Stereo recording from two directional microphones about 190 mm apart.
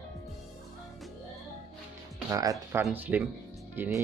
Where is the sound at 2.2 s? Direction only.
15° right (ahead or behind).